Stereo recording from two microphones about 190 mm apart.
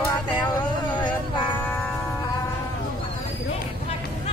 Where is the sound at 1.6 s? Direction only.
10° left (ahead or behind).